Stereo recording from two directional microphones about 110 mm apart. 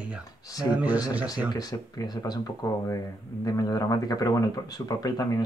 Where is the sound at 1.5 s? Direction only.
35° left (ahead or behind).